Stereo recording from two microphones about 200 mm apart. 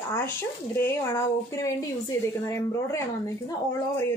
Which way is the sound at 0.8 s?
15° left (ahead or behind).